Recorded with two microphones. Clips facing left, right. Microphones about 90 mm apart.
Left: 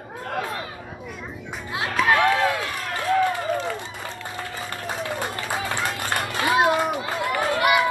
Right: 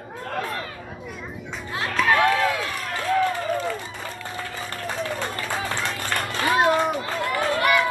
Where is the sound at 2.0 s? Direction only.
30° left (ahead or behind).